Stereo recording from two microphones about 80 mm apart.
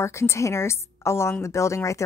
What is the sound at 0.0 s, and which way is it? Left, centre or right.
A woman's voice, left.